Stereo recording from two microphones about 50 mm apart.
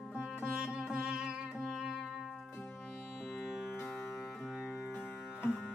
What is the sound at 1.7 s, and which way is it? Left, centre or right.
Music, centre.